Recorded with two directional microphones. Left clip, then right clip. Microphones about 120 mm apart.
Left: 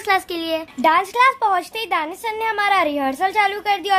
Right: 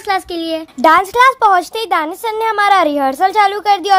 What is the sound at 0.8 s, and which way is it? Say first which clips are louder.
A woman's voice: right 7 dB; 55° right (ahead or behind).